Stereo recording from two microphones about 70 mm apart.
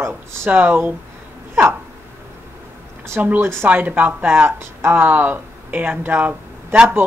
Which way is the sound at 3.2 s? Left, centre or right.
Right.